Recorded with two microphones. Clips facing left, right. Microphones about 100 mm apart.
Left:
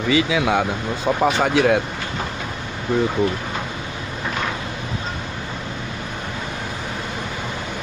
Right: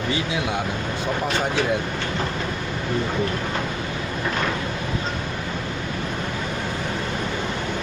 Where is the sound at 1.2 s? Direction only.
85° left.